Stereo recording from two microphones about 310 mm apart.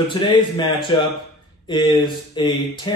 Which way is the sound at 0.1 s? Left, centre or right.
Centre.